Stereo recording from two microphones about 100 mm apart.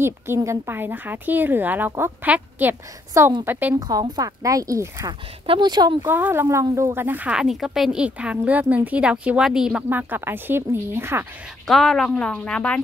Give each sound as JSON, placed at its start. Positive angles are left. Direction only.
{"t": 0.0, "sound": "a woman's voice", "side_deg": -25}
{"t": 4.2, "sound": "speech", "side_deg": -35}
{"t": 5.5, "sound": "speech", "side_deg": -45}
{"t": 6.0, "sound": "a woman's voice", "side_deg": -20}
{"t": 7.3, "sound": "a woman's voice", "side_deg": -5}
{"t": 9.8, "sound": "a woman's voice", "side_deg": -20}
{"t": 11.6, "sound": "speech", "side_deg": 5}